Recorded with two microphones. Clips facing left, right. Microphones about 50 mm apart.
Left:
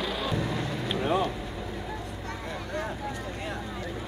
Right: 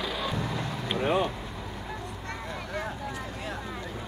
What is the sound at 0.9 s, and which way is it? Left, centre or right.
Vehicle, right.